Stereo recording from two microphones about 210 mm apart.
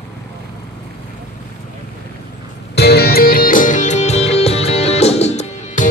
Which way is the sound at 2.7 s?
50° left (ahead or behind).